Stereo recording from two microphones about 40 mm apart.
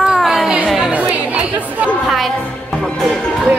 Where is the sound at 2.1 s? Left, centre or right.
Centre.